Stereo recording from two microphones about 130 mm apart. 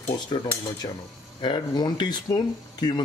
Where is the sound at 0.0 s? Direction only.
35° left (ahead or behind).